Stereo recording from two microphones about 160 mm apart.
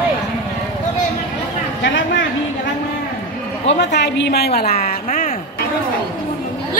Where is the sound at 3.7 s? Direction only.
90° left; by 5.3 s 60° left (ahead or behind).